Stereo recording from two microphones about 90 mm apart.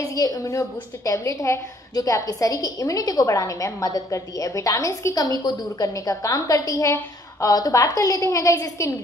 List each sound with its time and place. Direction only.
0.0 s a woman's voice: 45° left (ahead or behind)